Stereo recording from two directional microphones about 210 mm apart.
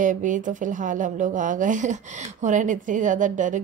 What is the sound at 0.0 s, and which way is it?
A woman's voice, 35° right (ahead or behind).